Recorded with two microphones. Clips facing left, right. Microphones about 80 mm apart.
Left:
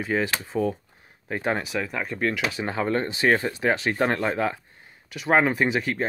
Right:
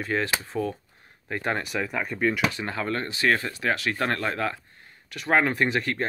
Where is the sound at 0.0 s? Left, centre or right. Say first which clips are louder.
Left 1 dB; centre.